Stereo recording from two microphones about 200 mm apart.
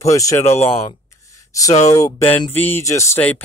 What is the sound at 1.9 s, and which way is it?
Speech, 15° left (ahead or behind).